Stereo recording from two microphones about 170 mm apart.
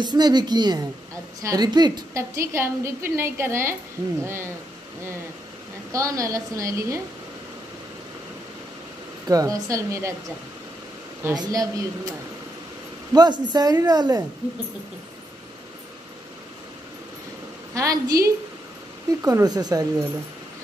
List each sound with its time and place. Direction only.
0.0 s a woman's voice: 25° right (ahead or behind)
5.9 s a woman's voice: 20° right (ahead or behind)
9.3 s a woman's voice: 20° right (ahead or behind)
11.3 s a woman's voice: 25° right (ahead or behind)
13.1 s a woman's voice: 25° right (ahead or behind)
17.7 s a woman's voice: 20° right (ahead or behind)